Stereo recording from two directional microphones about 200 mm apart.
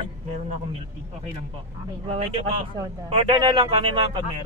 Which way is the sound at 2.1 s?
30° right (ahead or behind).